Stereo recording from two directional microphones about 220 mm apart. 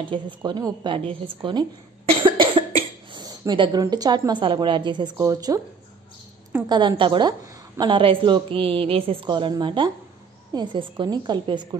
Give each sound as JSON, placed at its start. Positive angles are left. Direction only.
{"t": 0.0, "sound": "a woman's voice", "side_deg": -20}